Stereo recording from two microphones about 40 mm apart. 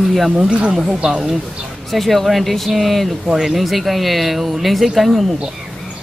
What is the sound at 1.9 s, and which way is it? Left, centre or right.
Speech, centre.